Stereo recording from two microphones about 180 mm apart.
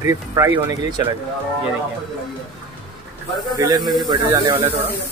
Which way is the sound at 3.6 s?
20° right (ahead or behind).